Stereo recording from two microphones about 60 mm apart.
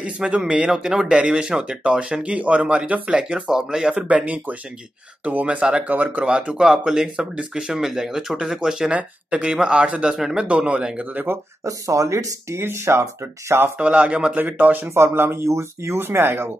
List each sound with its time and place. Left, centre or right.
0.0 s speech: centre
3.9 s speech: right
10.0 s speech: centre
10.4 s speech: centre
11.3 s speech: right
11.6 s speech: right
13.7 s speech: centre
14.4 s speech: right
15.0 s speech: right